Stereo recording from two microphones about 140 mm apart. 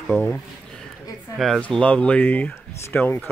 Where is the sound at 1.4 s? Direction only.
5° left (ahead or behind).